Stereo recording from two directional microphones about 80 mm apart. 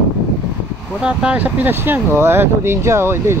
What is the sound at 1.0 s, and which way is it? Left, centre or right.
Speech, centre.